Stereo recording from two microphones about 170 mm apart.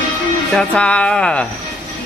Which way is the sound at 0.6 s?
5° left (ahead or behind).